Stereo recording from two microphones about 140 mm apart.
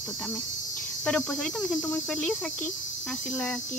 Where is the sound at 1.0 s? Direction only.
5° left (ahead or behind).